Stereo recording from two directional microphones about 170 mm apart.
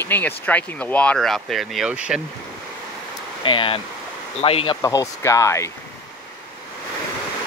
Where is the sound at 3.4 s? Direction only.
30° left (ahead or behind).